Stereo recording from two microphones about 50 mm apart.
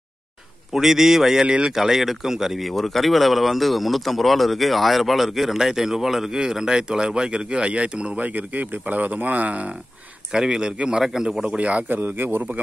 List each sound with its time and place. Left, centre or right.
0.7 s speech: centre
8.2 s speech: right
10.3 s speech: centre
11.4 s a man's voice: right
11.9 s speech: right